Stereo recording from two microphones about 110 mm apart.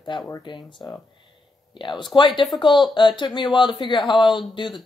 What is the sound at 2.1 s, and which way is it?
Speech, 45° left (ahead or behind).